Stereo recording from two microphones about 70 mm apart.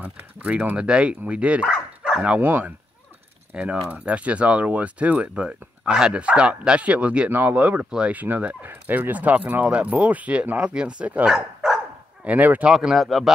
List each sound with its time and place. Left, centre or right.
0.0 s speech: right
2.4 s speech: right
3.5 s speech: centre
12.3 s speech: right
12.7 s speech: centre